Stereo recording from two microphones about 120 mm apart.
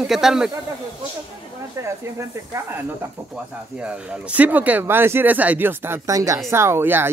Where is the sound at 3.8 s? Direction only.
10° right (ahead or behind).